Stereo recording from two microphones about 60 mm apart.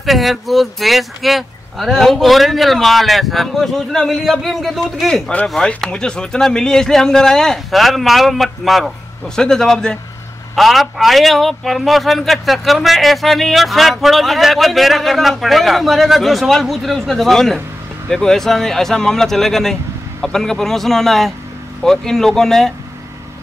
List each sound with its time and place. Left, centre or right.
0.0 s a man's voice: centre
5.9 s speech: centre
10.5 s a man's voice: centre